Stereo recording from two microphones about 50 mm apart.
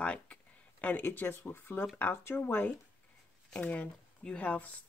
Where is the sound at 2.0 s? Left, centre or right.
Left.